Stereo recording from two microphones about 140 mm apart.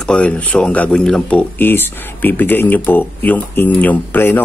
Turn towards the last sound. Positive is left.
turn(degrees=15)  # may be behind; listen again after turning